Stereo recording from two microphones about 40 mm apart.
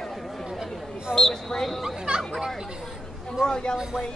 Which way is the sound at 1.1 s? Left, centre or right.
Centre.